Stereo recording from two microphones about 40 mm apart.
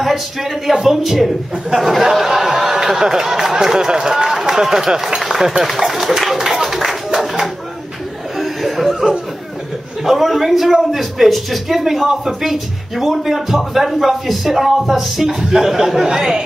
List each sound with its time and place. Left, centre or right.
0.0 s speech: centre
7.1 s clapping: centre
8.4 s chuckle: centre
10.0 s speech: centre
15.2 s speech: centre